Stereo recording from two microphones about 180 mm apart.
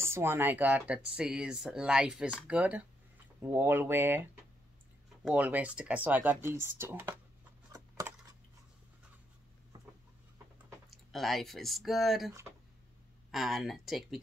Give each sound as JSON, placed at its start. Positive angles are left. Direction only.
{"t": 0.0, "sound": "speech", "side_deg": -15}
{"t": 7.7, "sound": "a sound", "side_deg": -20}
{"t": 10.9, "sound": "speech", "side_deg": 0}
{"t": 12.3, "sound": "speech", "side_deg": -15}
{"t": 13.3, "sound": "speech", "side_deg": 0}